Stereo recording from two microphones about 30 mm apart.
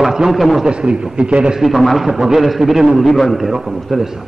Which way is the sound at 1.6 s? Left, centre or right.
Centre.